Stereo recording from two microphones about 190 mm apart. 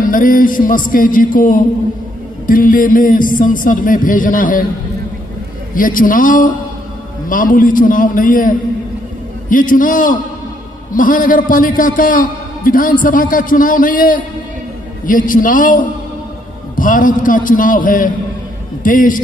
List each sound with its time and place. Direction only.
0.0 s a man's voice: 45° left (ahead or behind)
5.8 s a man's voice: 45° left (ahead or behind)